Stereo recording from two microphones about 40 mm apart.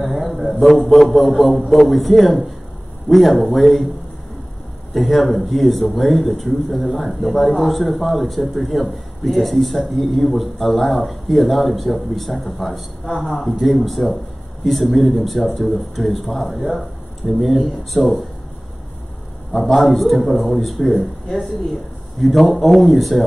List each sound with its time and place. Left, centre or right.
0.0 s a sound: centre
0.5 s speech: centre
4.9 s speech: centre
17.2 s speech: right
17.6 s speech: centre
19.7 s speech: centre